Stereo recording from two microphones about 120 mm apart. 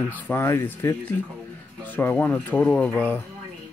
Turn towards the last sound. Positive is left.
turn(degrees=15)  # may be behind; listen again after turning